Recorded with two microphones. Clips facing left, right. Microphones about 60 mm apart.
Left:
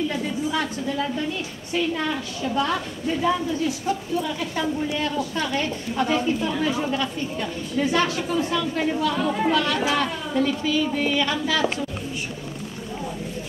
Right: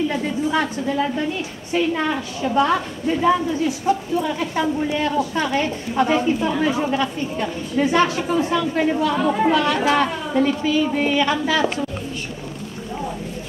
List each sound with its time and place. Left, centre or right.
0.5 s a woman's voice: right